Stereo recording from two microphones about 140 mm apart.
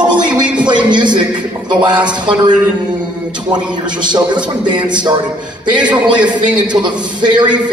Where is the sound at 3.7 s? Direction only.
35° right (ahead or behind).